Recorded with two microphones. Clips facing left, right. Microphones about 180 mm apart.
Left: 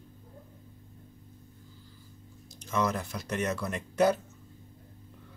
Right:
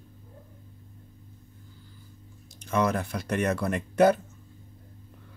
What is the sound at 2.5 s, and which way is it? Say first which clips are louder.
Speech: right 4 dB; 60° right (ahead or behind).